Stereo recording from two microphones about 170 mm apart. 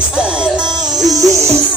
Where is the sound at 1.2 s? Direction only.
15° right (ahead or behind).